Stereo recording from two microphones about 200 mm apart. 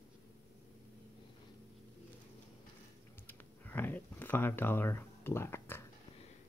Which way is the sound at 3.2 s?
10° left (ahead or behind).